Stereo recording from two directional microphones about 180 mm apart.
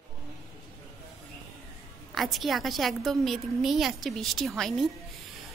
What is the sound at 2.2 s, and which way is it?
A woman's voice, centre (ahead or behind).